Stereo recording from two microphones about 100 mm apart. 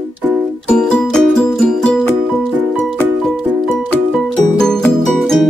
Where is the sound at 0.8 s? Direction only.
5° left (ahead or behind).